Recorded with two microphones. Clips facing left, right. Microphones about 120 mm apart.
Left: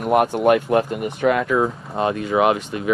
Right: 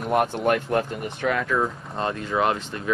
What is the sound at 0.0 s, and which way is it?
Speech, 5° left (ahead or behind).